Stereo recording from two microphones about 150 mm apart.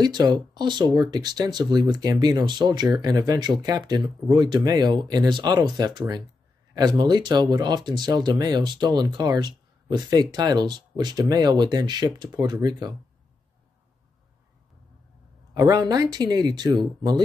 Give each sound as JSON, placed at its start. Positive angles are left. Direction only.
{"t": 0.0, "sound": "speech", "side_deg": -30}
{"t": 15.5, "sound": "speech", "side_deg": -25}